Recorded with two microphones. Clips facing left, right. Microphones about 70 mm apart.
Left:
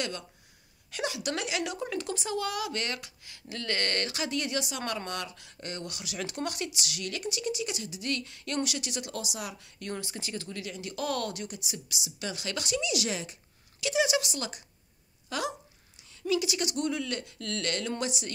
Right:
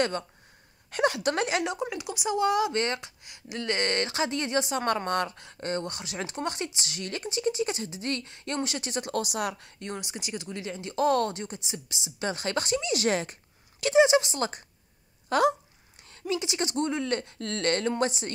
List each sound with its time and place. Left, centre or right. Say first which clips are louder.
0.9 s speech: right 7 dB; right
1.6 s speech: right 2 dB; right
2.3 s speech: right 9 dB; right
9.2 s speech: right 7 dB; right
9.8 s speech: right 1 dB; right
10.6 s speech: right 11 dB; right
14.0 s speech: right 7 dB; right
16.3 s speech: left 1 dB; right